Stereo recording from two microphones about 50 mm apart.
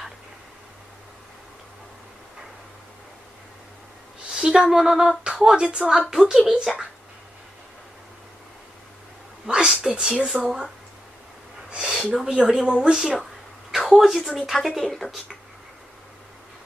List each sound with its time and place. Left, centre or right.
4.3 s speech: centre
9.5 s speech: centre
12.3 s speech: centre
12.9 s speech: centre